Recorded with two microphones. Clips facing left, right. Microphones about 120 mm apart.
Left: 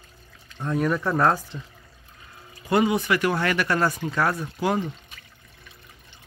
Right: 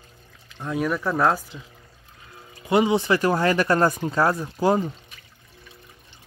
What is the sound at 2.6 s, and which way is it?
Speech, 20° right (ahead or behind).